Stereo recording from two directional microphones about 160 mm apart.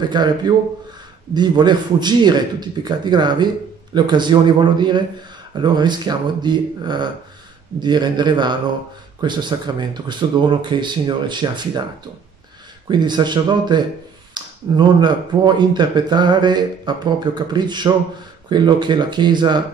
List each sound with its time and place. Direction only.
0.2 s speech: 30° right (ahead or behind)
12.9 s speech: 25° right (ahead or behind)